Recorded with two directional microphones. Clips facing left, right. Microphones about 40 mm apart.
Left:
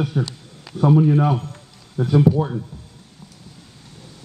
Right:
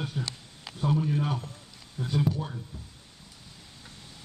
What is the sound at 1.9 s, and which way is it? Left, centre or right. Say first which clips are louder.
Speech: left 12 dB; left.